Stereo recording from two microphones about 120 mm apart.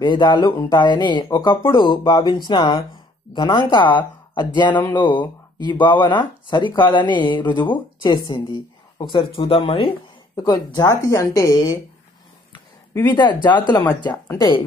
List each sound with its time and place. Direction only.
0.0 s speech: 40° left (ahead or behind)
10.3 s speech: 35° left (ahead or behind)
13.0 s speech: 40° left (ahead or behind)
13.8 s speech: 20° left (ahead or behind)